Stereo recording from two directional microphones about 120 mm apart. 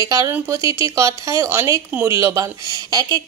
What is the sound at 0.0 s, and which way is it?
Speech, 30° right (ahead or behind).